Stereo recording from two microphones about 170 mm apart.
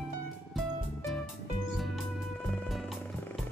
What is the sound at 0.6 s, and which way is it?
Music, centre (ahead or behind).